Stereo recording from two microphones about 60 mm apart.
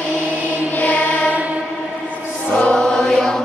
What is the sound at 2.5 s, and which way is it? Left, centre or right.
Choir, centre.